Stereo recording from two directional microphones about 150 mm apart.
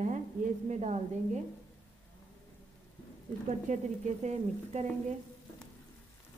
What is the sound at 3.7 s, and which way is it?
Stir, 55° right (ahead or behind).